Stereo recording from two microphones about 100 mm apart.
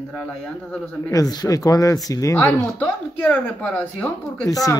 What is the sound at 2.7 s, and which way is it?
Speech, 15° left (ahead or behind).